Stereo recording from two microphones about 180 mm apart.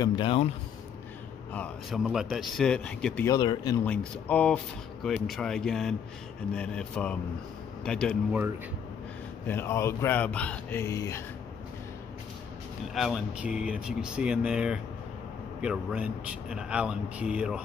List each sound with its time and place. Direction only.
0.0 s speech: 25° left (ahead or behind)
1.5 s speech: 10° left (ahead or behind)
2.0 s speech: centre (ahead or behind)
3.3 s speech: 20° left (ahead or behind)
3.8 s speech: 5° left (ahead or behind)
9.5 s speech: 15° left (ahead or behind)
12.8 s speech: centre (ahead or behind)